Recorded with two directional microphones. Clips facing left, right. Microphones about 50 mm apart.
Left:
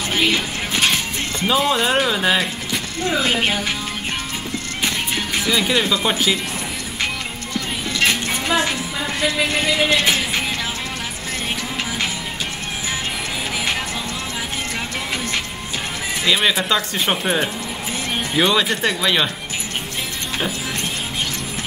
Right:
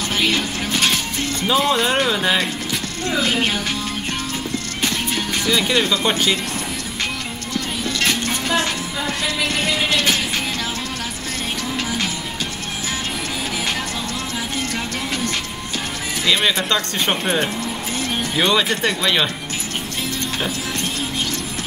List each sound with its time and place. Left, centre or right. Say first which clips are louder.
0.1 s music: left 1 dB; centre
1.5 s speech: even; centre
3.1 s speech: left 1 dB; centre
4.8 s music: even; centre
8.0 s music: left 2 dB; centre
16.3 s speech: even; centre